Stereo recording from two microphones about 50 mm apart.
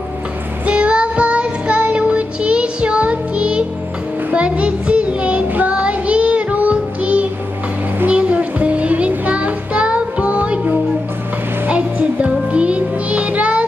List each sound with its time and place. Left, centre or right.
0.7 s child singing: right
11.6 s music: right